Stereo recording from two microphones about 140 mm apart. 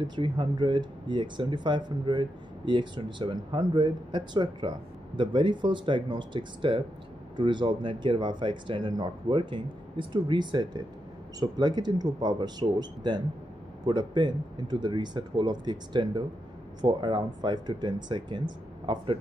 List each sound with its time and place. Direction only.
0.0 s speech: 35° right (ahead or behind)